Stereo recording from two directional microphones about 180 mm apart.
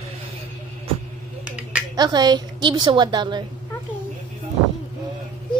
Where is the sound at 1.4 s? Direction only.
5° right (ahead or behind).